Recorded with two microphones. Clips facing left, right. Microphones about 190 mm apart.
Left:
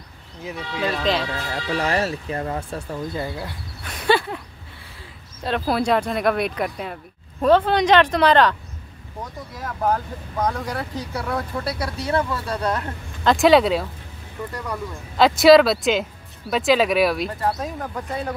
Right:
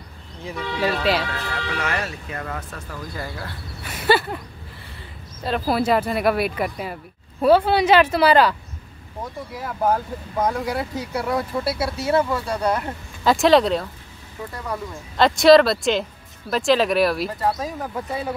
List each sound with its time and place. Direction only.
0.4 s speech: centre (ahead or behind)
1.5 s speech: 30° left (ahead or behind)
3.8 s a sound: 5° right (ahead or behind)
5.4 s speech: centre (ahead or behind)